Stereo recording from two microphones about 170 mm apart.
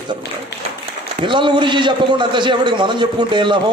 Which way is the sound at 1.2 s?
30° right (ahead or behind).